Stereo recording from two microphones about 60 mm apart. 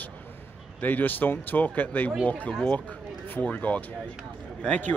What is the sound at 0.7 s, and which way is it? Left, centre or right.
Speech, left.